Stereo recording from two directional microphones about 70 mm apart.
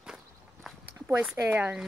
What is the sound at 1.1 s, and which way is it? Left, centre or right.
Speech, right.